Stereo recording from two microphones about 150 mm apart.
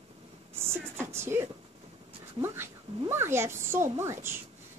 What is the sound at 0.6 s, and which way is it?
Speech, 15° right (ahead or behind).